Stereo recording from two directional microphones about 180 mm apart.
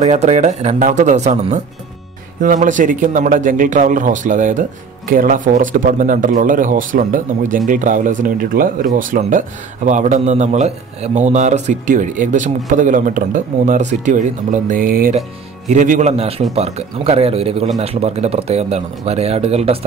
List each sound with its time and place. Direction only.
0.0 s a man's voice: 40° right (ahead or behind)